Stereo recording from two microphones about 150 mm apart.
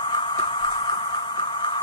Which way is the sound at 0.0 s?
30° left (ahead or behind).